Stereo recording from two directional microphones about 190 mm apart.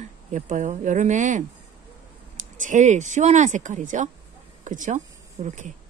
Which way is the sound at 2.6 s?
40° right (ahead or behind).